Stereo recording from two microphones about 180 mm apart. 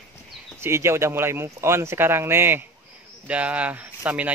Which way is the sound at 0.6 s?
15° right (ahead or behind).